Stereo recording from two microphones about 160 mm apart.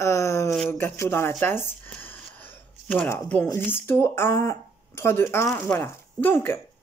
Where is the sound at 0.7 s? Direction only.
15° left (ahead or behind).